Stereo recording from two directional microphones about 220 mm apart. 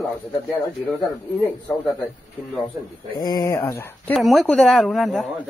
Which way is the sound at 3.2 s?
15° left (ahead or behind).